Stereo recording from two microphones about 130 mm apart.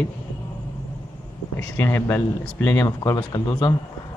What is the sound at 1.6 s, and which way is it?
A man's voice, 20° left (ahead or behind).